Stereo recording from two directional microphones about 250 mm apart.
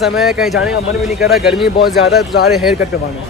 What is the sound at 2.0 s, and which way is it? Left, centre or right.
Speech, left.